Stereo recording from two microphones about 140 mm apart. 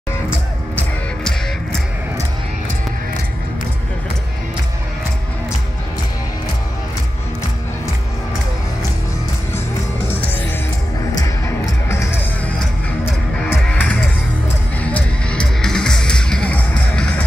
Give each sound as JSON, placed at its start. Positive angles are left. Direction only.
{"t": 11.1, "sound": "music", "side_deg": 20}
{"t": 13.5, "sound": "music", "side_deg": 10}